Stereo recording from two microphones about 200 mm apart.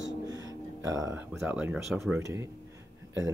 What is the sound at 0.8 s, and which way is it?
Speech, 15° right (ahead or behind).